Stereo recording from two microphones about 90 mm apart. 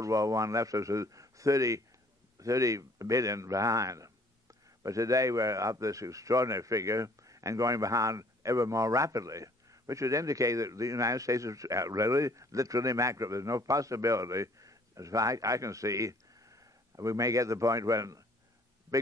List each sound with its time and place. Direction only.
0.0 s a man's voice: 40° right (ahead or behind)